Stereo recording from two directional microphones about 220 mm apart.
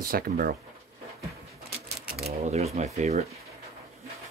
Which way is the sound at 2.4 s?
30° right (ahead or behind).